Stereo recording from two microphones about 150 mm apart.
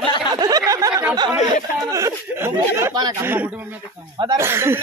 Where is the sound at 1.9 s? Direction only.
20° right (ahead or behind).